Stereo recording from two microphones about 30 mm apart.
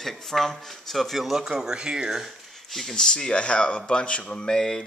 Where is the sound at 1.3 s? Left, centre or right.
Centre.